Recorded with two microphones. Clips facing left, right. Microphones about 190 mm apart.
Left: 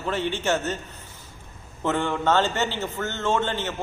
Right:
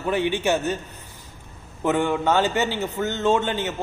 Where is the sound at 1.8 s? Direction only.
15° right (ahead or behind).